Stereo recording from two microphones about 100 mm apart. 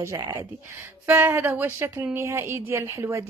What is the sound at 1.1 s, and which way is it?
Speech, 20° right (ahead or behind).